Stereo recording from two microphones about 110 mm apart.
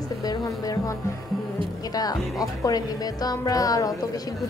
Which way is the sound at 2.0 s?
35° left (ahead or behind).